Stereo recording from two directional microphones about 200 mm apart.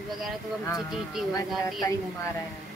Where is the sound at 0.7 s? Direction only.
Centre (ahead or behind).